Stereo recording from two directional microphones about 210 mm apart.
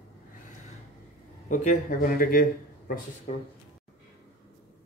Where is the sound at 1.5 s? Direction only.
40° left (ahead or behind).